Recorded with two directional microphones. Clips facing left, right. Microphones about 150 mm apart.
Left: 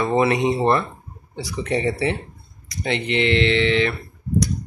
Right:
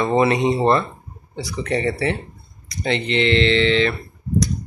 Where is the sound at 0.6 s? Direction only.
20° right (ahead or behind).